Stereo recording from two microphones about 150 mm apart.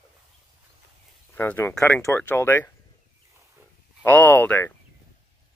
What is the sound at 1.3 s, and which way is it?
Speech, 15° left (ahead or behind).